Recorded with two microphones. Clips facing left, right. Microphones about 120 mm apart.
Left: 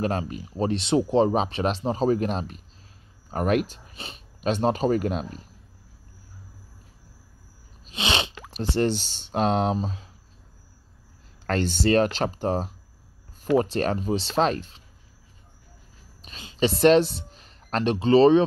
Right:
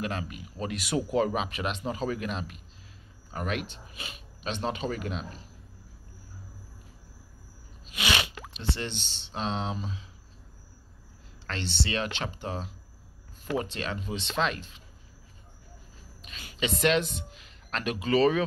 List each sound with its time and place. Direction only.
0.0 s speech: 35° left (ahead or behind)
4.4 s speech: 45° left (ahead or behind)
7.8 s plop: 25° left (ahead or behind)
8.5 s speech: 40° left (ahead or behind)
11.4 s speech: 45° left (ahead or behind)
16.2 s a sound: 35° left (ahead or behind)
16.5 s speech: 35° left (ahead or behind)